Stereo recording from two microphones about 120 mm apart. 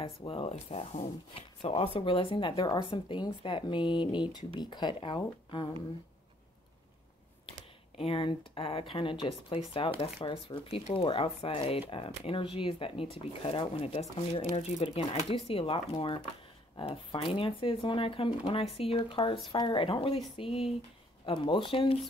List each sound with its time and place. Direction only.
0.0 s speech: 50° left (ahead or behind)
8.0 s speech: 45° left (ahead or behind)